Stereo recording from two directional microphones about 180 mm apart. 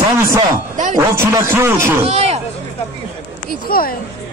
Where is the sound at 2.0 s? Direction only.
35° right (ahead or behind).